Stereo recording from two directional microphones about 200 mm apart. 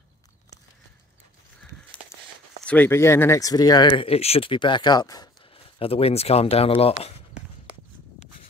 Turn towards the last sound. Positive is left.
turn(degrees=30)  # may be behind; listen again after turning